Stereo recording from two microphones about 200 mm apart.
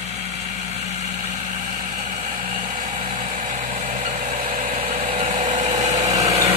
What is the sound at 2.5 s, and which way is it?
Vehicle, 35° right (ahead or behind).